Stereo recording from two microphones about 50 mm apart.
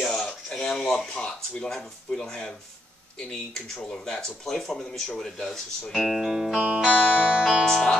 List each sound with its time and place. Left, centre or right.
0.2 s a sound: centre
1.2 s speech: left
1.7 s speech: centre
6.7 s music: centre
7.6 s speech: centre